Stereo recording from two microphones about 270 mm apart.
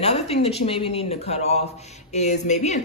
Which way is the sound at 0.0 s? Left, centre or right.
Left.